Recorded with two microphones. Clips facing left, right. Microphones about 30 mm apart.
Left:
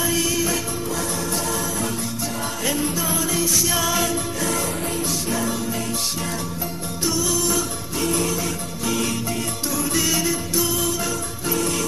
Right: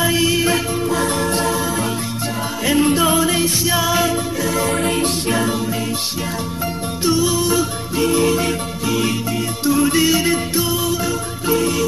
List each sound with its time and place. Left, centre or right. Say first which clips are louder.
0.0 s music: right 6 dB; right
2.7 s music: right 12 dB; right
3.6 s music: right 5 dB; centre
4.6 s music: right 7 dB; right
7.1 s music: right 6 dB; right
9.7 s music: right 9 dB; right
10.2 s music: right 5 dB; right
10.6 s music: right 4 dB; right